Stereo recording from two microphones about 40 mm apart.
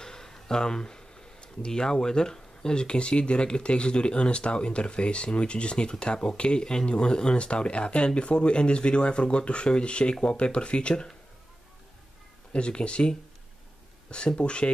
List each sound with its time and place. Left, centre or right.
0.0 s speech: centre
12.5 s speech: left
14.1 s speech: left